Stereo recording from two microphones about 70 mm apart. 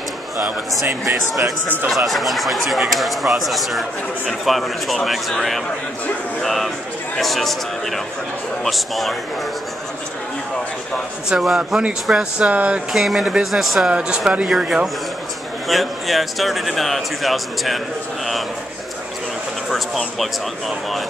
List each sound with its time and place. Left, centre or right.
1.9 s speech: centre
11.2 s speech: centre
12.9 s speech: centre
13.8 s speech: centre
19.7 s speech: centre